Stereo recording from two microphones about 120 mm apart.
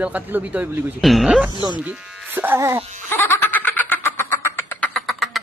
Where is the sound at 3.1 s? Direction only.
20° left (ahead or behind).